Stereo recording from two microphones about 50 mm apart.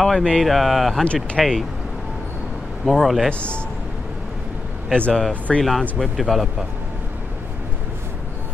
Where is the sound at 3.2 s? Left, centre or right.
Left.